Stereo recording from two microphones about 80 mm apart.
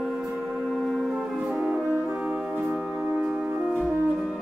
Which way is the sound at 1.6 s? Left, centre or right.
Centre.